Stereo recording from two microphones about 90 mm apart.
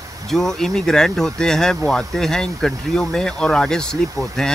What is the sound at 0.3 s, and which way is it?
Speech, 5° left (ahead or behind).